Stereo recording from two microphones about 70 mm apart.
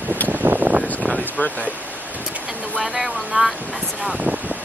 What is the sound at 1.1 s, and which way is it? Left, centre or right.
Boat, left.